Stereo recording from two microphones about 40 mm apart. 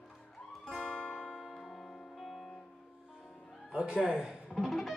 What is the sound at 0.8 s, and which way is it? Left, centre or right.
Music, left.